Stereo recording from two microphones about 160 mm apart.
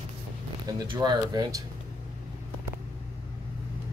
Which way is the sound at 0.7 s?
30° right (ahead or behind).